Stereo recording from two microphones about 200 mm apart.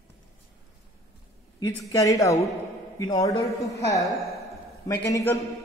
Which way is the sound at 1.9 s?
15° left (ahead or behind).